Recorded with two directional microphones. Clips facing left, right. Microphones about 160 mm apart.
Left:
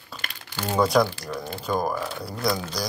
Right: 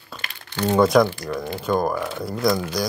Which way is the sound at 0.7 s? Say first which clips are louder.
Right 4 dB; centre (ahead or behind).